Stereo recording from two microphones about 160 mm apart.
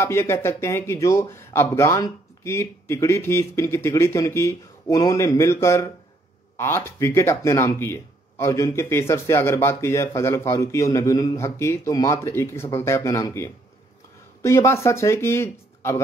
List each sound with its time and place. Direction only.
0.0 s speech: 15° left (ahead or behind)